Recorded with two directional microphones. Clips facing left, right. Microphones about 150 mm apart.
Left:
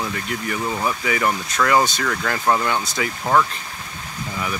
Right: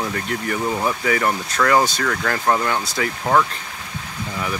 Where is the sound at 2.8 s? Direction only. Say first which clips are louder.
Right 1 dB; 20° left (ahead or behind).